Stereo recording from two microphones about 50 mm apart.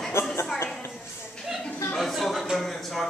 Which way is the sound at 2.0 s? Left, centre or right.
Centre.